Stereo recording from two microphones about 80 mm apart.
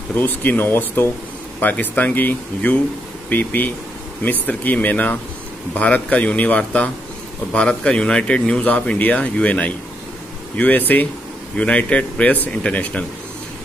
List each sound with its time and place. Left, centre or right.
0.1 s speech: left